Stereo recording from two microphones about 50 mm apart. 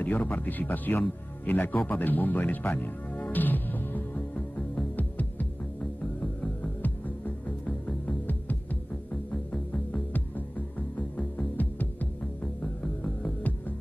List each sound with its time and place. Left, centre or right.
0.0 s speech: left
4.9 s music: left
11.0 s music: left
13.2 s music: left